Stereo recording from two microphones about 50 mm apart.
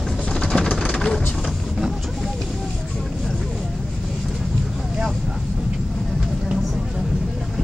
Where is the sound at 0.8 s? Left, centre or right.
Centre.